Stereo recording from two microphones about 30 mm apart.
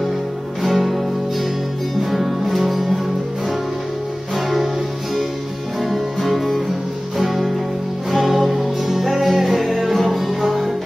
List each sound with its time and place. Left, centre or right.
0.6 s music: centre
5.8 s music: centre